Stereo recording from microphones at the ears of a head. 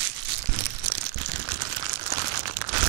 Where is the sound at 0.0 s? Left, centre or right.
Right.